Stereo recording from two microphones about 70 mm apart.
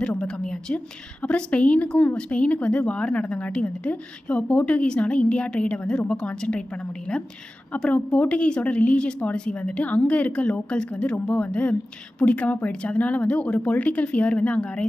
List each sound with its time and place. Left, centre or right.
0.0 s a woman's voice: centre